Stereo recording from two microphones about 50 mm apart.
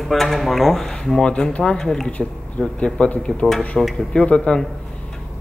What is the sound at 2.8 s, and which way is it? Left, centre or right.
Speech, left.